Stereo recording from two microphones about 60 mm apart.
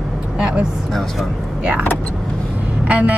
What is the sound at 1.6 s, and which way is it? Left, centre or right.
Speech, right.